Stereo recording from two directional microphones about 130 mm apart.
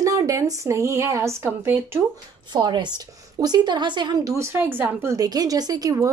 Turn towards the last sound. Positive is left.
turn(degrees=-25)  # may be behind; listen again after turning